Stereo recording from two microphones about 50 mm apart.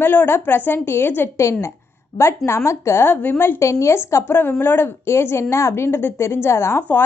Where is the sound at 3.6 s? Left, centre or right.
Left.